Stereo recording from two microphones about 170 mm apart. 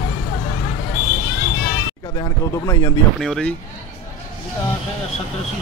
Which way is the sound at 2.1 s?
20° left (ahead or behind).